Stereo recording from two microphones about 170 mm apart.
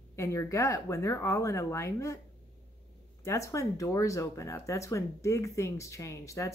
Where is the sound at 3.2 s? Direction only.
15° left (ahead or behind).